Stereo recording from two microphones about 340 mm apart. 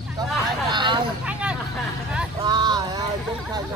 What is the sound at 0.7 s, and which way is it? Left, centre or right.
Vehicle, centre.